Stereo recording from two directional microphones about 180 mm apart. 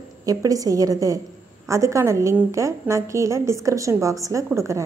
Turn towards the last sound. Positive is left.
turn(degrees=-15)  # may be behind; listen again after turning